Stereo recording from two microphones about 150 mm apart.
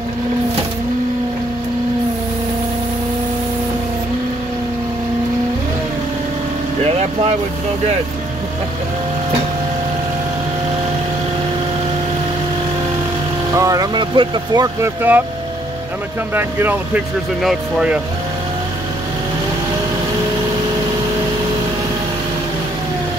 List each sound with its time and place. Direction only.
6.8 s vehicle: 45° right (ahead or behind)
13.6 s speech: 25° right (ahead or behind)
15.0 s speech: 10° right (ahead or behind)
16.3 s speech: 15° right (ahead or behind)
17.4 s speech: 5° right (ahead or behind)